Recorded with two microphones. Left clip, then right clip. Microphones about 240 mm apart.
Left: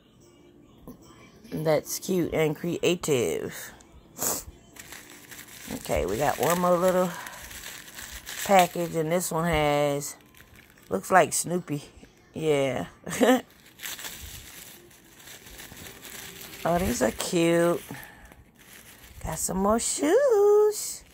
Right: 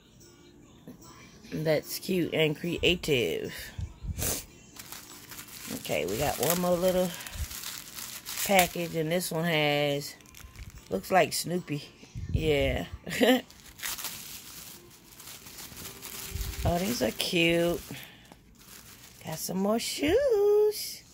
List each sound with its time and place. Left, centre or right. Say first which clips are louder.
1.5 s speech: left 3 dB; centre
4.2 s a sound: left 3 dB; centre
6.0 s speech: left 5 dB; centre
8.5 s speech: left 4 dB; centre
16.6 s speech: left 4 dB; centre
19.2 s a sound: left 5 dB; centre